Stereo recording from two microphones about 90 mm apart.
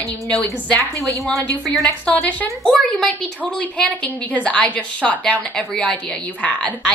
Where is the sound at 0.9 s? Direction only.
40° right (ahead or behind).